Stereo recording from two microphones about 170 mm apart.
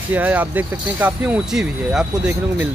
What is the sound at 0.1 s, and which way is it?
Speech, 10° right (ahead or behind).